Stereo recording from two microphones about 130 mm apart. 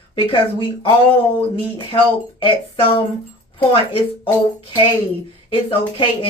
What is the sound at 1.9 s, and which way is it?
Speech, 45° left (ahead or behind).